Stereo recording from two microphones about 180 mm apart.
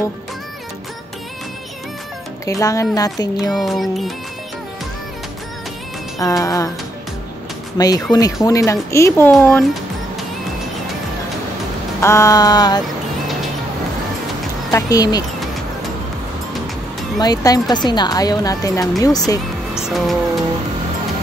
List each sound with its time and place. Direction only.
2.4 s speech: 15° left (ahead or behind)
3.5 s speech: centre (ahead or behind)
6.1 s speech: 20° left (ahead or behind)
7.7 s speech: 20° left (ahead or behind); by 9.7 s 5° left (ahead or behind)
12.0 s speech: 15° left (ahead or behind)
14.7 s speech: 20° left (ahead or behind)
17.2 s speech: 20° left (ahead or behind)
19.7 s music: centre (ahead or behind)